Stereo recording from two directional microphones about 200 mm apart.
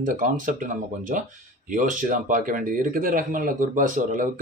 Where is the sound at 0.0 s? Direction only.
40° right (ahead or behind).